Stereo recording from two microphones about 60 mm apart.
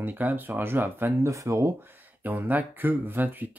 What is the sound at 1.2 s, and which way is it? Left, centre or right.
Speech, right.